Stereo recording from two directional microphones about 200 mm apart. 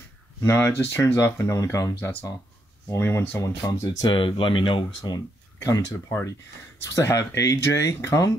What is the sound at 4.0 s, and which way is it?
Speech, 25° left (ahead or behind).